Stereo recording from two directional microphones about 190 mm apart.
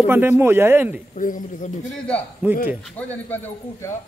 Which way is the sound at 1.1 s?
45° left (ahead or behind).